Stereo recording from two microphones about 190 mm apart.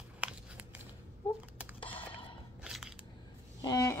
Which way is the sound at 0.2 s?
5° right (ahead or behind).